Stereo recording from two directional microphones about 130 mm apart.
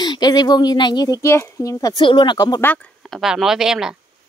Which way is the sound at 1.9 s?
40° left (ahead or behind).